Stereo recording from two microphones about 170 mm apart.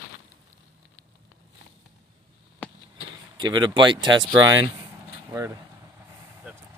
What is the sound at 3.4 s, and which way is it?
Speech, 25° right (ahead or behind).